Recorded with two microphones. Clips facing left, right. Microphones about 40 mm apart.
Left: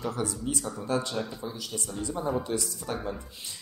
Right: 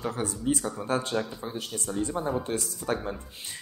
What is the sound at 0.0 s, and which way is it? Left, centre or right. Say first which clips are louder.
Speech: right 1 dB; right.